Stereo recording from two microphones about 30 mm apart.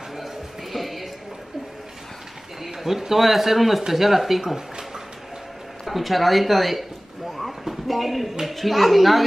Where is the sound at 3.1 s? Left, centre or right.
Centre.